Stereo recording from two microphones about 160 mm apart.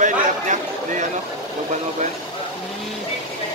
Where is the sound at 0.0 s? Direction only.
50° right (ahead or behind).